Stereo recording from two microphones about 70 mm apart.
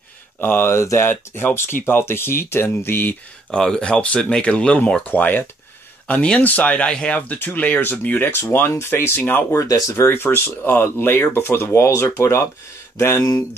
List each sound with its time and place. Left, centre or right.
0.4 s speech: left
3.5 s speech: centre
6.0 s speech: centre
7.2 s speech: left
9.6 s speech: left
10.0 s speech: left